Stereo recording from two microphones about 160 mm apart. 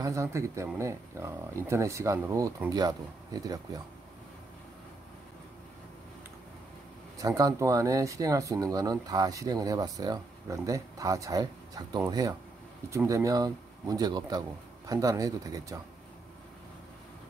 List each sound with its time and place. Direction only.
0.0 s speech: 20° right (ahead or behind)
7.2 s speech: 20° right (ahead or behind)